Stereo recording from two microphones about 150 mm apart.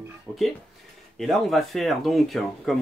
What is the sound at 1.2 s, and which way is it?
Speech, centre (ahead or behind).